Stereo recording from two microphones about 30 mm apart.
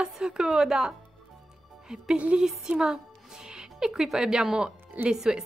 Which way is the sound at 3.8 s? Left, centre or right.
Centre.